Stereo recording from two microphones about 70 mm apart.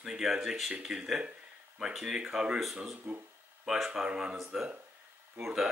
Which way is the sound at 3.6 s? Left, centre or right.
Centre.